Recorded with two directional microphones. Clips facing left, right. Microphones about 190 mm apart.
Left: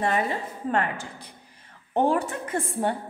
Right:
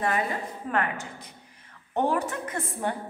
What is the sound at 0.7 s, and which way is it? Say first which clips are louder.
A woman's voice: left 3 dB; 30° left (ahead or behind).